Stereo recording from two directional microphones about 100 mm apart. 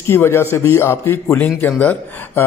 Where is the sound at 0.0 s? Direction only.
25° left (ahead or behind).